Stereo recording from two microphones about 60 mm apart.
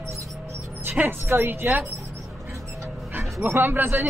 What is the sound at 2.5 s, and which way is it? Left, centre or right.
Dog, right.